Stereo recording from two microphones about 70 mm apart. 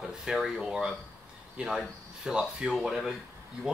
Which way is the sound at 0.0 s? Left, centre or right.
Centre.